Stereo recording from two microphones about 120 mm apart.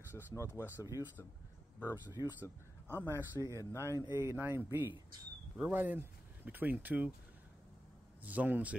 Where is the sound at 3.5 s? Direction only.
25° left (ahead or behind).